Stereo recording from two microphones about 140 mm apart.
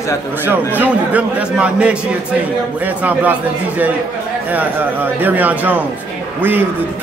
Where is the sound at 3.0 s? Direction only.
10° right (ahead or behind).